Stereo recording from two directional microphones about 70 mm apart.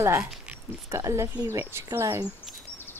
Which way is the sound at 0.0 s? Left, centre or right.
Right.